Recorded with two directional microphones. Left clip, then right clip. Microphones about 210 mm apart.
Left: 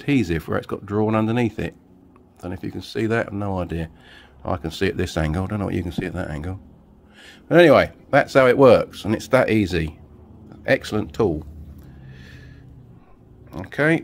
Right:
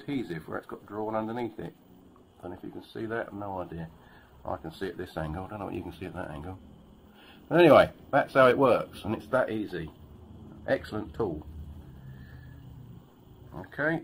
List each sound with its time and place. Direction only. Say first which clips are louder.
0.0 s speech: left 13 dB; 50° left (ahead or behind)
13.5 s speech: left 10 dB; 50° left (ahead or behind)